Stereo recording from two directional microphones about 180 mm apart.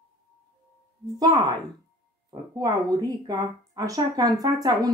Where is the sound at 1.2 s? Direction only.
20° right (ahead or behind).